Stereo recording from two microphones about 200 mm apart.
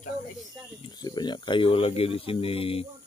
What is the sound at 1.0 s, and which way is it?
Speech, 20° left (ahead or behind).